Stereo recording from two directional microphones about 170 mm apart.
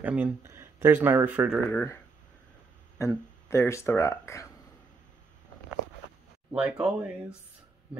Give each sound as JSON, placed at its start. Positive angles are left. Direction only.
{"t": 0.0, "sound": "speech", "side_deg": -10}
{"t": 1.7, "sound": "speech", "side_deg": 10}
{"t": 3.0, "sound": "speech", "side_deg": 15}
{"t": 6.8, "sound": "speech", "side_deg": -5}